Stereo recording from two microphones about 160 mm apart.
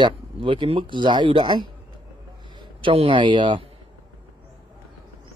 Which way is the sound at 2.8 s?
30° right (ahead or behind).